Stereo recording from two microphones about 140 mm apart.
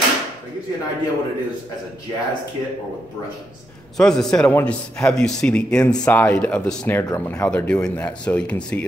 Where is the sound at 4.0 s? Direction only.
5° left (ahead or behind).